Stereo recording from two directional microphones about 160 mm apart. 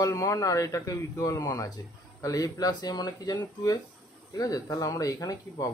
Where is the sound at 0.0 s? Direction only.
20° left (ahead or behind).